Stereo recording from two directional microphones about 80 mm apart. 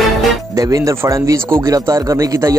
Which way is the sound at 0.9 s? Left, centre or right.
Right.